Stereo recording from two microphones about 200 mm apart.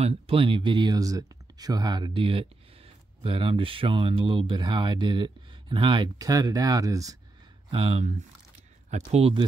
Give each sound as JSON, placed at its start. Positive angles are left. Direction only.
{"t": 0.0, "sound": "speech", "side_deg": -30}
{"t": 7.7, "sound": "speech", "side_deg": -30}